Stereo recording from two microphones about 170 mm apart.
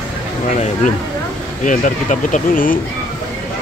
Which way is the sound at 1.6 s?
50° left (ahead or behind).